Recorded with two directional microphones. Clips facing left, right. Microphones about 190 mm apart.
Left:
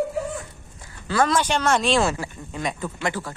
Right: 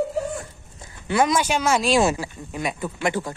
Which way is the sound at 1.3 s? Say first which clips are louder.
Even; 10° right (ahead or behind).